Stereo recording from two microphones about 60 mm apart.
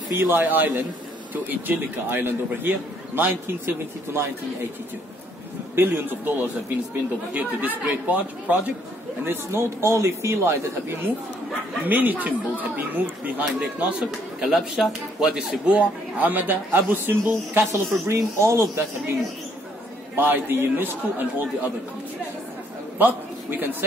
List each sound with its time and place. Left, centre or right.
0.1 s a man's voice: right
5.8 s a man's voice: right
9.2 s speech: right
11.8 s speech: right
14.4 s speech: centre
15.7 s a man's voice: right
20.2 s a man's voice: right
22.9 s a man's voice: right